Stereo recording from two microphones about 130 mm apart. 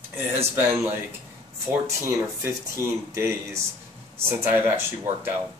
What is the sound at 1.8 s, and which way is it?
Speech, 20° right (ahead or behind).